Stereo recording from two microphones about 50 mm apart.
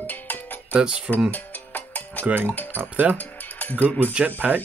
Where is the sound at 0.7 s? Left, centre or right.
Right.